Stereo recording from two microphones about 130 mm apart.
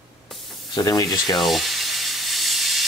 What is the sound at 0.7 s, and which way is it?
Speech, 25° left (ahead or behind).